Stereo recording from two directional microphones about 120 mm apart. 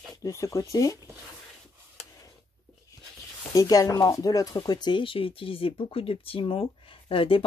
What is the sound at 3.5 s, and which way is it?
Speech, 30° left (ahead or behind).